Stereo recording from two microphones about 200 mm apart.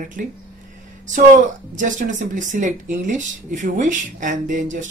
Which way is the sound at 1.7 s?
40° right (ahead or behind).